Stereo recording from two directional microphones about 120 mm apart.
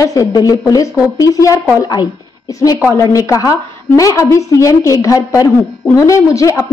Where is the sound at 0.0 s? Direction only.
30° left (ahead or behind).